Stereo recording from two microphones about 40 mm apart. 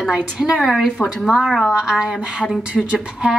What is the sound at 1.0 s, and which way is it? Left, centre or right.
Speech, left.